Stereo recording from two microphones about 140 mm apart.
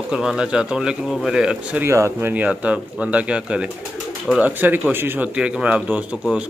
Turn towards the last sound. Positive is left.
turn(degrees=-10)  # may be behind; listen again after turning